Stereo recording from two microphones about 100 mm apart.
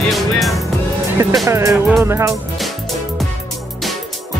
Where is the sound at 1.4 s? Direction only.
30° right (ahead or behind).